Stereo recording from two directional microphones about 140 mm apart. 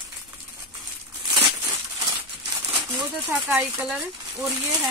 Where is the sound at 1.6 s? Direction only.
25° right (ahead or behind).